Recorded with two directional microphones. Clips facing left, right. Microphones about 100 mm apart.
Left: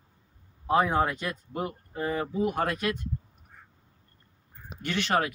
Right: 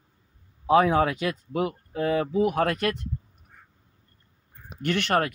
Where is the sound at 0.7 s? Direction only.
80° right.